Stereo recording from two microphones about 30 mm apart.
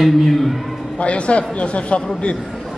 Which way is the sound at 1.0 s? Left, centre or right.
Left.